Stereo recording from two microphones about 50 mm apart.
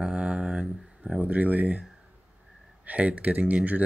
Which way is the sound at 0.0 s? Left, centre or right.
Centre.